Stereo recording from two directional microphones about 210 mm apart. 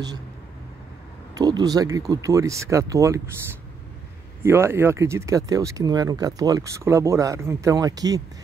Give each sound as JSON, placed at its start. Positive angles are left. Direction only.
{"t": 1.3, "sound": "speech", "side_deg": -20}
{"t": 4.4, "sound": "speech", "side_deg": -10}